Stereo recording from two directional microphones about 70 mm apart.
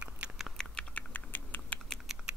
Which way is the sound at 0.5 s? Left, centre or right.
Centre.